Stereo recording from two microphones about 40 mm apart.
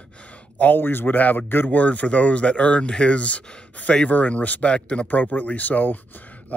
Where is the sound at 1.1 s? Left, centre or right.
Left.